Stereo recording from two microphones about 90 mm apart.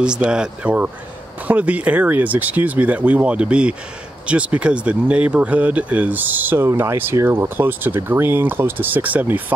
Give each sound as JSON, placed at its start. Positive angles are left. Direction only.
{"t": 0.0, "sound": "speech", "side_deg": -10}